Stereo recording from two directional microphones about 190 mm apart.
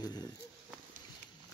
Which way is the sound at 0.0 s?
20° left (ahead or behind).